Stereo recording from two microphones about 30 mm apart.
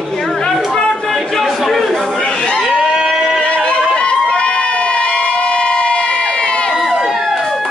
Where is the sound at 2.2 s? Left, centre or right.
Left.